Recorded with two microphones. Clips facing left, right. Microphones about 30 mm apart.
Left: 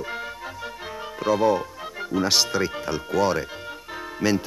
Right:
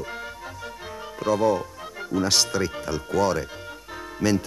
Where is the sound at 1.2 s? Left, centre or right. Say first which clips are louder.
Left 1 dB; centre.